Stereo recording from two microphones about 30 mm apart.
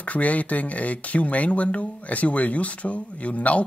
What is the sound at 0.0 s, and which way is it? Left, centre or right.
Speech, left.